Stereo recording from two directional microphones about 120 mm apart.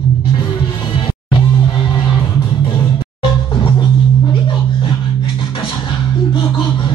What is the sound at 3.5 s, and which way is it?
Music, 45° left (ahead or behind).